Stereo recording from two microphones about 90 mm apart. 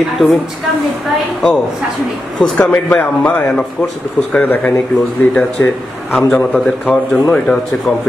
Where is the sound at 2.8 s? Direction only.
20° left (ahead or behind).